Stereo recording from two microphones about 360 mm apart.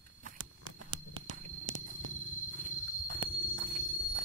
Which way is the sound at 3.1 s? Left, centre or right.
Right.